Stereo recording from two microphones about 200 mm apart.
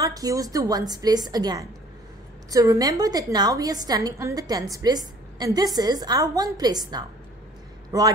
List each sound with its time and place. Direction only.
0.0 s a woman's voice: 15° right (ahead or behind)